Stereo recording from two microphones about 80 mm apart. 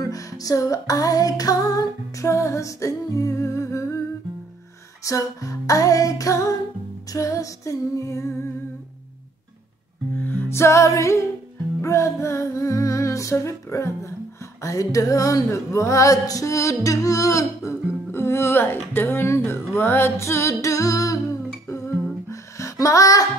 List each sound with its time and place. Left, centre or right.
0.0 s music: left
5.0 s music: left
10.1 s music: left
10.5 s music: left
18.1 s speech: left
22.3 s music: left